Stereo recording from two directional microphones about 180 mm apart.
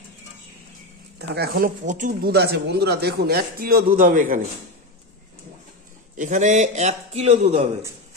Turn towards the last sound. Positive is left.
turn(degrees=-35)  # may be behind; listen again after turning